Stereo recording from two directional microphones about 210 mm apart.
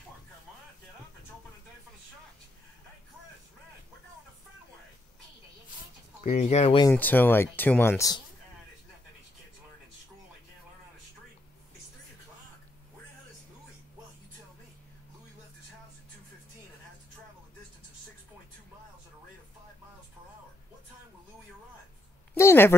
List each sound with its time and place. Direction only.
6.2 s speech: 30° left (ahead or behind)
6.9 s speech: 10° left (ahead or behind)
22.3 s a sound: 10° left (ahead or behind)